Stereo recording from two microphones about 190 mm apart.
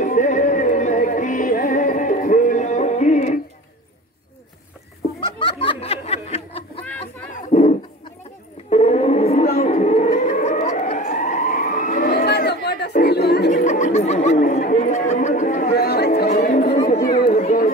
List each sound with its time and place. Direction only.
0.0 s music: 40° left (ahead or behind)
5.2 s a sound: 25° left (ahead or behind)
9.6 s emergency vehicle: 35° left (ahead or behind)
12.3 s chatter: 60° left (ahead or behind)
13.5 s chatter: 40° left (ahead or behind)
16.3 s chatter: 45° left (ahead or behind)
17.2 s a sound: 45° left (ahead or behind)